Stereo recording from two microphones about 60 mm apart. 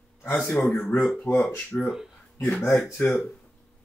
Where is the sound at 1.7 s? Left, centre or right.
Left.